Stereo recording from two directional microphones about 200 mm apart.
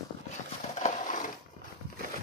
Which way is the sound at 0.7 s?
40° left (ahead or behind).